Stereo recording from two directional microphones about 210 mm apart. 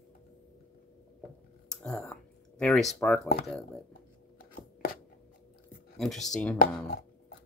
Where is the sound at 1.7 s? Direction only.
Centre (ahead or behind).